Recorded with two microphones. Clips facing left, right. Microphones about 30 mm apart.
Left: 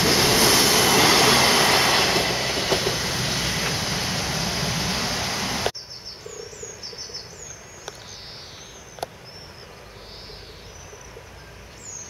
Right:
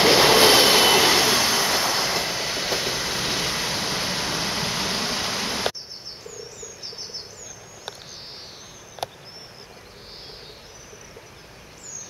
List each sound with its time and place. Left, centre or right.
0.0 s train: right
1.3 s train: left
1.6 s train: left
2.1 s train: centre
3.7 s vehicle: centre
4.9 s a sound: centre